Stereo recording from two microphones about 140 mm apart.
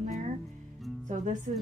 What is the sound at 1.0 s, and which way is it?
Speech, 60° right (ahead or behind).